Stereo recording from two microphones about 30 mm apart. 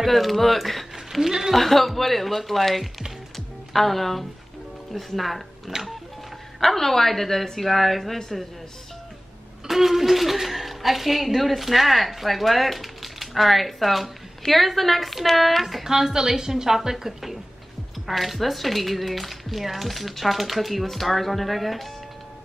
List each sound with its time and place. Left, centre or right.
0.0 s a woman's voice: centre
3.3 s music: centre
5.1 s a woman's voice: centre
5.7 s printer: right
6.6 s a woman's voice: centre
9.7 s a woman's voice: centre
15.8 s a woman's voice: centre
18.0 s a woman's voice: centre